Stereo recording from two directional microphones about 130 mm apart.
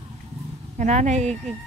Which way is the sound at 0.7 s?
60° right (ahead or behind).